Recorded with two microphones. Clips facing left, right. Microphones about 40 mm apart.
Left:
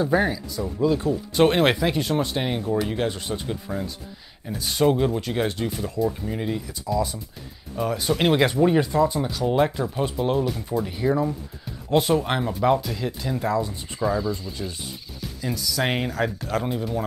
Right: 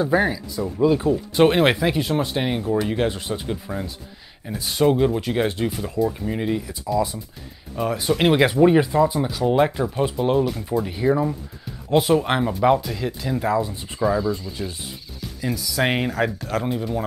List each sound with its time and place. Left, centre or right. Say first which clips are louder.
0.0 s speech: right 2 dB; centre
15.4 s speech: right 3 dB; centre
16.3 s speech: right 1 dB; centre